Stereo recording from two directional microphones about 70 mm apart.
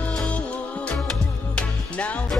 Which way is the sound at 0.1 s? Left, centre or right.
Centre.